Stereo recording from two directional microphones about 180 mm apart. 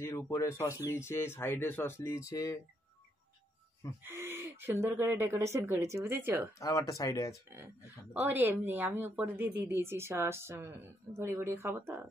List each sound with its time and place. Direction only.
0.0 s speech: 15° left (ahead or behind)
4.0 s speech: 15° right (ahead or behind)
6.6 s speech: 20° left (ahead or behind)
7.4 s speech: 10° right (ahead or behind)